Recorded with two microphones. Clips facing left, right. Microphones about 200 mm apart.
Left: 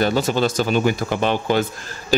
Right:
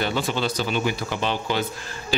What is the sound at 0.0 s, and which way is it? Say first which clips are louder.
A man's voice: left 6 dB; 40° left (ahead or behind).